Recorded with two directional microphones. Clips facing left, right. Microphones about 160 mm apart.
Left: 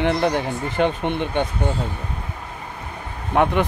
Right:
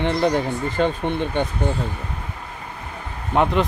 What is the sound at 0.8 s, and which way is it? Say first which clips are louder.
Speech: left 1 dB; 15° left (ahead or behind).